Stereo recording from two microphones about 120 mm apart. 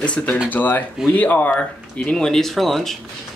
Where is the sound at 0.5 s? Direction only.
15° left (ahead or behind).